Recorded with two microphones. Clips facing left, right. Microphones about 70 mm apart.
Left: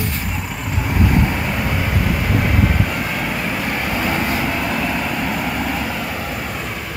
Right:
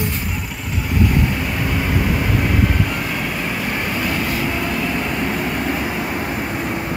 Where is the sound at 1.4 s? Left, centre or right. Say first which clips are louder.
Even; centre.